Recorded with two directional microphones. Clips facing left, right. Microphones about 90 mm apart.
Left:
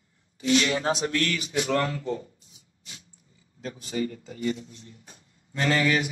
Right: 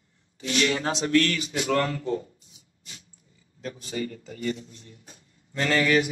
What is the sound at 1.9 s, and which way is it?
Speech, 35° right (ahead or behind).